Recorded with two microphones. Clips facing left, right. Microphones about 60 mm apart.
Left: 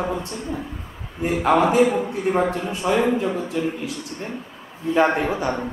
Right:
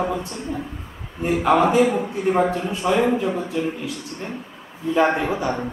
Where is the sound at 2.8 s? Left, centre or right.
Centre.